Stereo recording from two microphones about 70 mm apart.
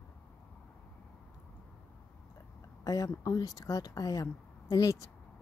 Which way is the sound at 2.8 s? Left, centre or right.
Left.